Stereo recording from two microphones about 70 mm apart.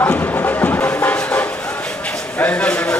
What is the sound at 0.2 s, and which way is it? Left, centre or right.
Music, left.